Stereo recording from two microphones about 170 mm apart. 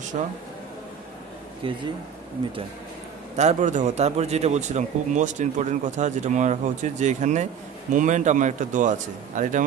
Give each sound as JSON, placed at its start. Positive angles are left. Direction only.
{"t": 0.1, "sound": "speech", "side_deg": -45}
{"t": 3.3, "sound": "speech", "side_deg": -45}